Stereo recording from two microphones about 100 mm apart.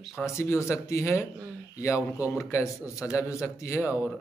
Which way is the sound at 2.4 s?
30° left (ahead or behind).